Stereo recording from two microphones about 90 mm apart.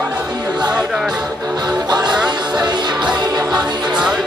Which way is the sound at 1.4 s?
40° right (ahead or behind).